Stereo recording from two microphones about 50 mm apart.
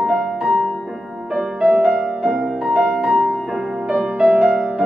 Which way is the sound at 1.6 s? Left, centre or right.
Centre.